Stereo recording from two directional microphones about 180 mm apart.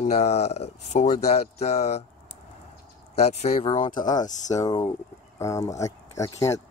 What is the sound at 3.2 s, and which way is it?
Speech, 35° left (ahead or behind).